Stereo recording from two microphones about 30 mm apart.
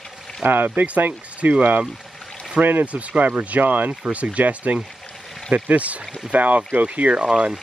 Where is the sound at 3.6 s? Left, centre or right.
Right.